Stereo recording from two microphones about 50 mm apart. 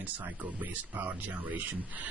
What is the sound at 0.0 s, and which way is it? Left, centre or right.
Speech, right.